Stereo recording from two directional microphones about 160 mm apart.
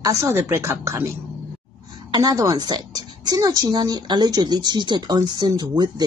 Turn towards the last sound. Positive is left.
turn(degrees=-25)  # may be behind; listen again after turning